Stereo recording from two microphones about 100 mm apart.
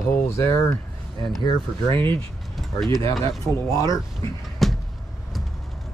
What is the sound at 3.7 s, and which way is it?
Speech, 35° left (ahead or behind).